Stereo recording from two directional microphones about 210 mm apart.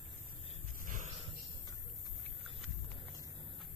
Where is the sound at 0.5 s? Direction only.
40° right (ahead or behind).